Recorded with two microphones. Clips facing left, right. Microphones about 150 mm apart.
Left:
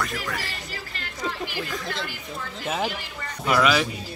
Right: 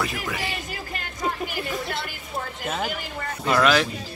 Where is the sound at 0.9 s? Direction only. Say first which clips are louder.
Right 3 dB; 50° right (ahead or behind).